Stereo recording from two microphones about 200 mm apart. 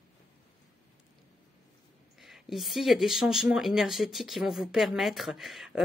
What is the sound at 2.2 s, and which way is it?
Speech, centre (ahead or behind).